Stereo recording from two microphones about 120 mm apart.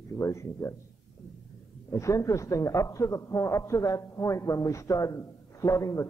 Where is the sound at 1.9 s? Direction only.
25° left (ahead or behind).